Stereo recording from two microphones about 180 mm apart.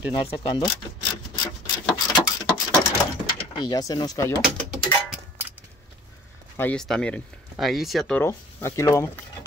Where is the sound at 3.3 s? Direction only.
20° left (ahead or behind).